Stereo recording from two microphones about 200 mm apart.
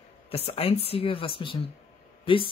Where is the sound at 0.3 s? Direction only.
30° left (ahead or behind).